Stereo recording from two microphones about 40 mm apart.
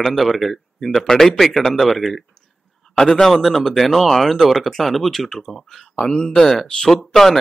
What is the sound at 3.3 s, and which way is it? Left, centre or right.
Speech, centre.